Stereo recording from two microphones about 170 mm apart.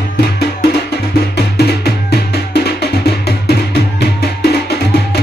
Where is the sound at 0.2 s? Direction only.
70° left (ahead or behind).